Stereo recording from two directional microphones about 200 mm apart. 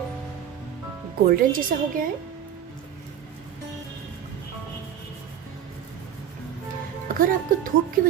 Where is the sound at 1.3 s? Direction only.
45° right (ahead or behind).